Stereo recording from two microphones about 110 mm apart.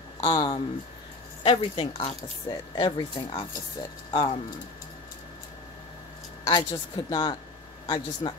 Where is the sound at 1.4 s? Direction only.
65° left (ahead or behind).